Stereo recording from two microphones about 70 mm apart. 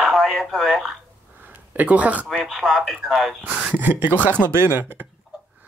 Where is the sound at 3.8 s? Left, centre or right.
Right.